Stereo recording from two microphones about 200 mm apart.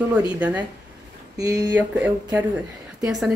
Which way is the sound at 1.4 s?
20° right (ahead or behind).